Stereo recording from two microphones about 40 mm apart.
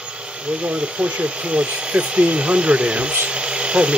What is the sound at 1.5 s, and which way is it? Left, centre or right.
Speech, right.